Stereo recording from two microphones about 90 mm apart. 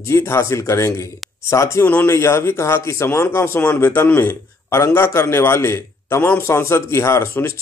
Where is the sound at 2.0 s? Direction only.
30° left (ahead or behind).